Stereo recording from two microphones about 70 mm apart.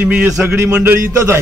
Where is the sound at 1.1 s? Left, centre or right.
Right.